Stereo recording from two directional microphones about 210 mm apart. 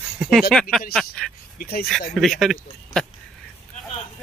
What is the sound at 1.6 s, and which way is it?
Speech, 45° left (ahead or behind).